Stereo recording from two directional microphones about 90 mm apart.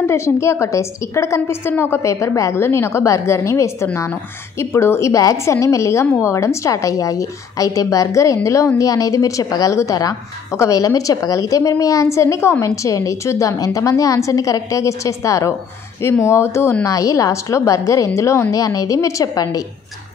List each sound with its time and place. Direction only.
0.0 s a woman's voice: 30° left (ahead or behind)